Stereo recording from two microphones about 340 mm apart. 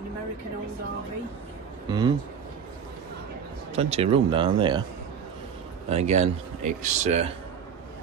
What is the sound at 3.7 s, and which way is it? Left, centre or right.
Speech, centre.